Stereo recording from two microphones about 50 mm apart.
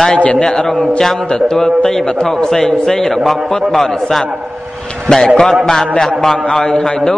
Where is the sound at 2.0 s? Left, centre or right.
Left.